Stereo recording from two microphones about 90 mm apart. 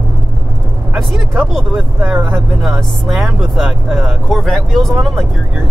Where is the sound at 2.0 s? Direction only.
20° right (ahead or behind).